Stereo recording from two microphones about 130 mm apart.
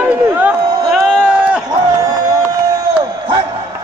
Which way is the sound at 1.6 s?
30° right (ahead or behind).